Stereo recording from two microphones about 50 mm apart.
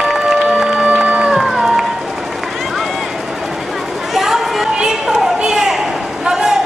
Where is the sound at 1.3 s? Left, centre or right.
Centre.